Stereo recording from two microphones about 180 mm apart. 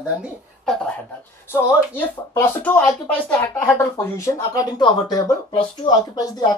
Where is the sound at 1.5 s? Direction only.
15° left (ahead or behind).